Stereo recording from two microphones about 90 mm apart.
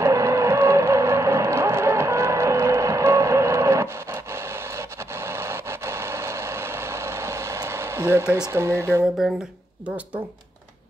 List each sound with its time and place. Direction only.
0.0 s music: 35° right (ahead or behind)
8.5 s speech: 30° right (ahead or behind)